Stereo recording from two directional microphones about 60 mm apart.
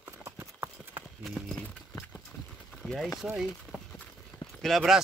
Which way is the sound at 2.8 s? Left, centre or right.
Left.